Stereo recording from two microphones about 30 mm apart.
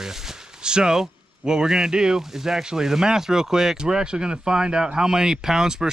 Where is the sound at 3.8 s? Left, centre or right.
Right.